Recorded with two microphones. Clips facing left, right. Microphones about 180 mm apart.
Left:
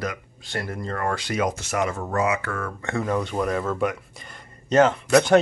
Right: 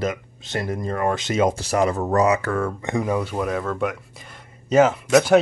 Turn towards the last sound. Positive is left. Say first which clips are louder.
# right 1 dB
turn(degrees=-5)  # may be behind; listen again after turning